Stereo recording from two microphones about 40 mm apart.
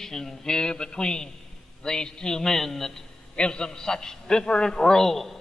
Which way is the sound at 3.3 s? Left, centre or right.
Left.